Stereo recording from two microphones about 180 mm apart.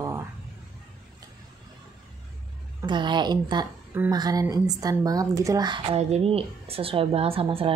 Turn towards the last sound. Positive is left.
turn(degrees=-30)  # may be behind; listen again after turning